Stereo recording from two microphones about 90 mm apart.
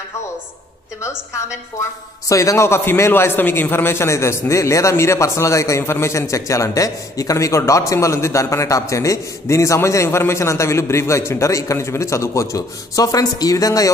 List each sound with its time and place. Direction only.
1.0 s a woman's voice: 35° left (ahead or behind)